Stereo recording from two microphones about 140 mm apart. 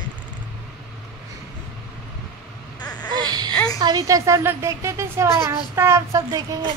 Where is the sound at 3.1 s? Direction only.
30° right (ahead or behind).